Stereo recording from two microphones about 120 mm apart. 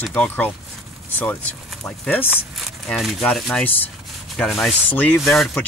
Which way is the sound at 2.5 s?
Centre (ahead or behind).